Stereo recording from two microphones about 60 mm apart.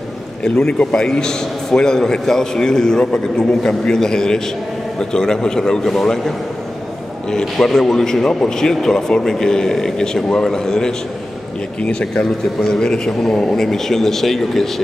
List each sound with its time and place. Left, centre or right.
0.4 s a man's voice: centre